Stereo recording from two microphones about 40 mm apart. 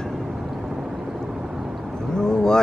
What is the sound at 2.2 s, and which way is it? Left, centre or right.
Vehicle, centre.